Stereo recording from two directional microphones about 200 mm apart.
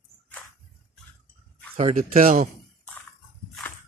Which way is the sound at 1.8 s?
40° right (ahead or behind).